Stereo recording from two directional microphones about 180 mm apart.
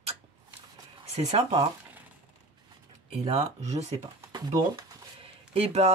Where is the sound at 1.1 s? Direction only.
35° right (ahead or behind).